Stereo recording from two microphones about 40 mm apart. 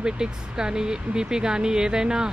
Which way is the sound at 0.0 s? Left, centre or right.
Centre.